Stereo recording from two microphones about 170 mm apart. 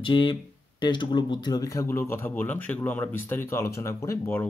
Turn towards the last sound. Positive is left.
turn(degrees=15)  # may be behind; listen again after turning